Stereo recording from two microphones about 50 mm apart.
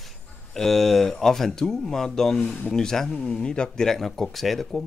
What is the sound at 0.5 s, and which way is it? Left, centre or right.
Speech, centre.